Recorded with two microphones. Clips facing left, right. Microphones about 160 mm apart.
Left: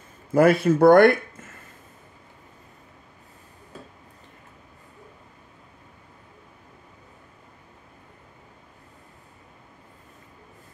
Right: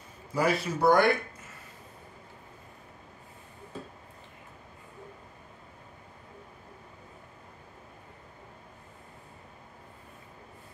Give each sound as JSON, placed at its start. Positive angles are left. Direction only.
{"t": 0.3, "sound": "speech", "side_deg": 55}